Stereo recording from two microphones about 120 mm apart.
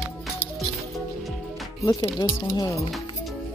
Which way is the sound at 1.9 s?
35° left (ahead or behind).